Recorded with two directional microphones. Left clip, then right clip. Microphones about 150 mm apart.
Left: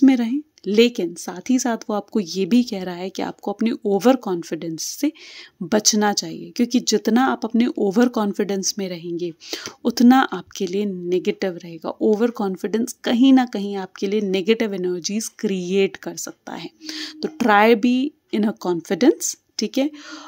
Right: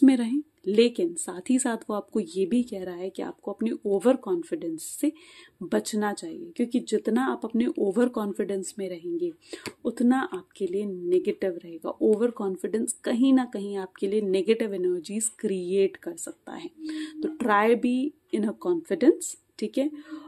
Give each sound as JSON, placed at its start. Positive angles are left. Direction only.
{"t": 0.0, "sound": "a woman's voice", "side_deg": 25}